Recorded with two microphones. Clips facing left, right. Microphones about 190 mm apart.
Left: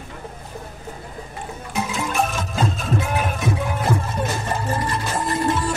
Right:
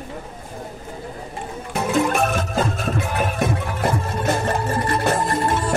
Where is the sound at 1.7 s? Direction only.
60° right (ahead or behind).